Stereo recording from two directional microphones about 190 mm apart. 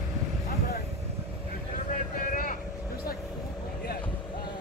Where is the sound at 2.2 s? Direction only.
45° left (ahead or behind).